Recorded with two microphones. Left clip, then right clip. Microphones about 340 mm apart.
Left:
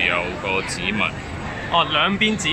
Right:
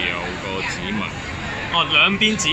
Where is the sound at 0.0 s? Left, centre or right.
Left.